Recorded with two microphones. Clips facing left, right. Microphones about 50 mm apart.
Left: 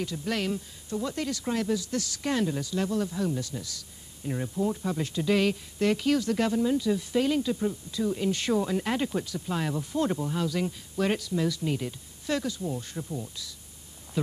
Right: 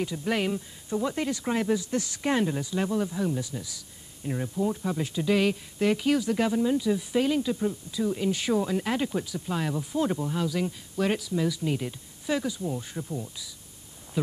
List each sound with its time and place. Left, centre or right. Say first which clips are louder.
0.0 s speech: right 3 dB; centre